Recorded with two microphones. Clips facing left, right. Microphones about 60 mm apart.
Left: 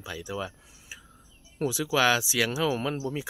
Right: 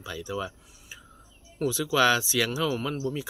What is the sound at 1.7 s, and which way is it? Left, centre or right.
Speech, centre.